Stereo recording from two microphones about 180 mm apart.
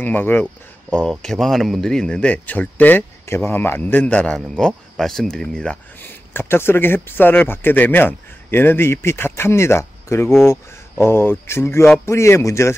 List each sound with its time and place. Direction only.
0.0 s speech: 10° left (ahead or behind)